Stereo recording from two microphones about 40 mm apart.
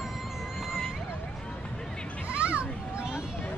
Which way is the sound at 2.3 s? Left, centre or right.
Right.